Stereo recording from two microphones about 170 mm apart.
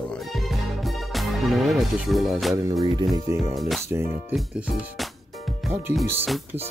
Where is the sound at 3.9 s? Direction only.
15° right (ahead or behind).